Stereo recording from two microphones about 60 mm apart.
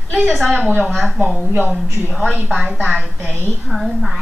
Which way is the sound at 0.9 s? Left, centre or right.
Centre.